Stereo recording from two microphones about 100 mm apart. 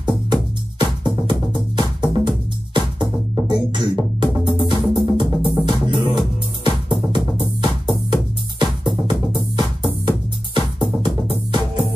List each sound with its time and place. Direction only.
0.0 s music: 50° right (ahead or behind)